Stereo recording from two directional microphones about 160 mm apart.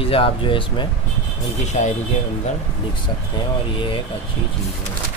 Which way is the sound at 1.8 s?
45° left (ahead or behind).